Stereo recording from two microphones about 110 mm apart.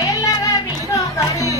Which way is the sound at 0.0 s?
35° left (ahead or behind).